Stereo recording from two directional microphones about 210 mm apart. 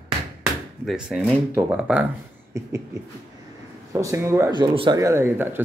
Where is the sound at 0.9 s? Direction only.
Centre (ahead or behind).